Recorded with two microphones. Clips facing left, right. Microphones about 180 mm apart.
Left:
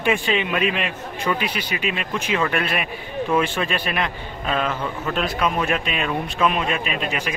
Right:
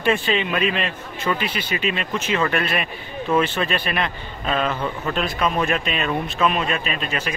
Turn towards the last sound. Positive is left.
turn(degrees=15)  # may be behind; listen again after turning